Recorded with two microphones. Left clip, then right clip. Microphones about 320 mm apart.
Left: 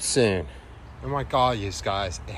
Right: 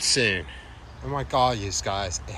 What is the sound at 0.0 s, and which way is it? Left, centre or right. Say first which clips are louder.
Speech: even; left.